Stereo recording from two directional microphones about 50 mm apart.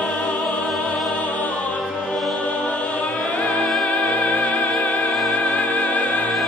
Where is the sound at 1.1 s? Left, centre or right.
Left.